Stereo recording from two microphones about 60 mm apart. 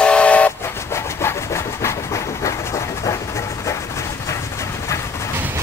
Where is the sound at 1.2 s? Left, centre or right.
Left.